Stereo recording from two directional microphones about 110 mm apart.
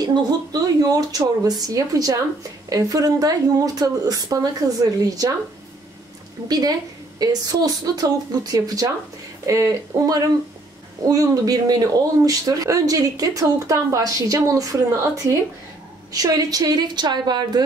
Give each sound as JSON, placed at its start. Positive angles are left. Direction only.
{"t": 0.0, "sound": "speech", "side_deg": -40}
{"t": 7.2, "sound": "speech", "side_deg": -35}
{"t": 16.1, "sound": "speech", "side_deg": -35}